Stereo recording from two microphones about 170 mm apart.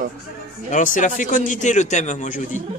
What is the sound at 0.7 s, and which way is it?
A man's voice, 50° left (ahead or behind).